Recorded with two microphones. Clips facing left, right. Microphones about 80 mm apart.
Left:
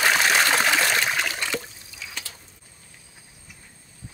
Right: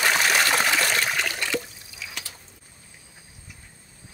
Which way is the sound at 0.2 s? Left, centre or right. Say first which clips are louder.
Left 1 dB; centre.